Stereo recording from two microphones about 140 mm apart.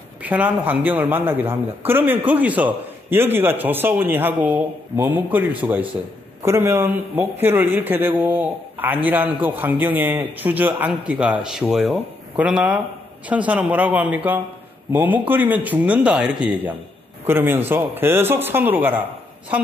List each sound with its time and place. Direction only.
0.2 s a man's voice: 10° right (ahead or behind)